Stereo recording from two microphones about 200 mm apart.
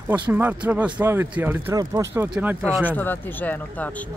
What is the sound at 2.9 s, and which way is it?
Speech, 10° left (ahead or behind).